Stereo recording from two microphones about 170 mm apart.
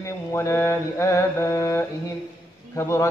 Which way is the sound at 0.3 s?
15° left (ahead or behind).